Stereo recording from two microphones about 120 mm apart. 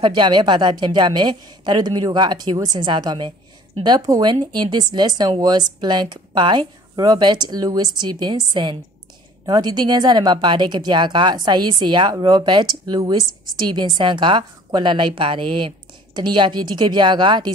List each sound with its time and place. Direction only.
0.0 s speech: 40° right (ahead or behind)